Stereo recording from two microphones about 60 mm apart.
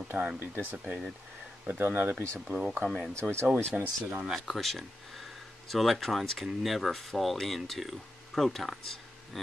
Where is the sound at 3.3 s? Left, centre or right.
Right.